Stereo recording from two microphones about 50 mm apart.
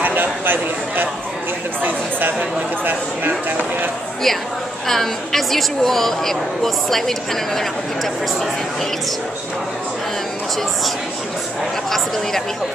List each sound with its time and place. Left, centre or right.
0.0 s a sound: right
1.8 s speech: right
4.8 s a woman's voice: centre